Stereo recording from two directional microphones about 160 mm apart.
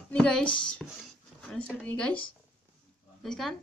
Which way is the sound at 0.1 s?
5° left (ahead or behind).